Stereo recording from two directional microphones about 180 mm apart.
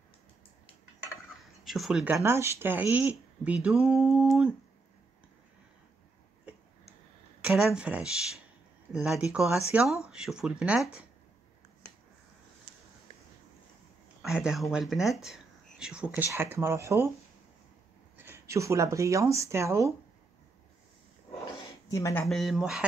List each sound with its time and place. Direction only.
1.4 s a sound: centre (ahead or behind)
2.1 s speech: 15° right (ahead or behind)
7.4 s speech: 5° right (ahead or behind)
14.2 s speech: 5° right (ahead or behind)
18.1 s speech: 15° right (ahead or behind)
21.8 s speech: 15° left (ahead or behind)
22.2 s speech: centre (ahead or behind)